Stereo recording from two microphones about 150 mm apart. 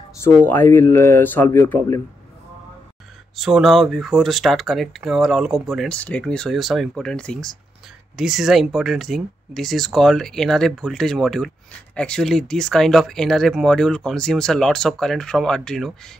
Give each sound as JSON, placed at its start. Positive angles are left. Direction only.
{"t": 0.5, "sound": "speech", "side_deg": 15}
{"t": 3.3, "sound": "speech", "side_deg": 0}